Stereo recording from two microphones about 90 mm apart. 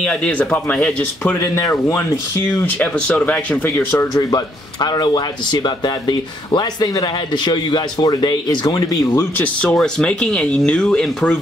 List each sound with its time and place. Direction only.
0.0 s speech: 15° left (ahead or behind)
1.4 s speech: 30° left (ahead or behind)
2.5 s speech: 20° left (ahead or behind)
3.6 s speech: 25° left (ahead or behind)
4.1 s a man's voice: 45° left (ahead or behind)
9.4 s speech: 15° left (ahead or behind)